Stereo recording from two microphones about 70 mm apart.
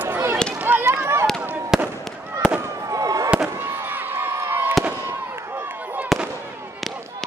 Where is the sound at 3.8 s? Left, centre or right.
Right.